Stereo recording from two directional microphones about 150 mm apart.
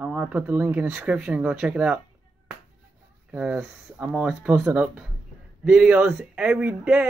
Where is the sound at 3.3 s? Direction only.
5° right (ahead or behind).